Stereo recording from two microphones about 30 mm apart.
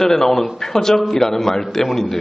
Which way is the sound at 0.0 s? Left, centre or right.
Centre.